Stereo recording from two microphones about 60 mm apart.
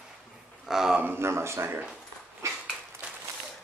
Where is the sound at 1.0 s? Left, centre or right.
Right.